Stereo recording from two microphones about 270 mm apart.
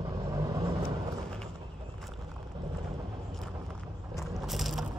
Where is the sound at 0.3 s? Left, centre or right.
Centre.